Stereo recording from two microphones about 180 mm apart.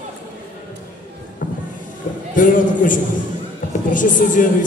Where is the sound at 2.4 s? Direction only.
45° left (ahead or behind).